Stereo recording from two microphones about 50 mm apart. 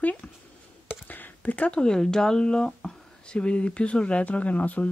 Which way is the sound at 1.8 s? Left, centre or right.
Centre.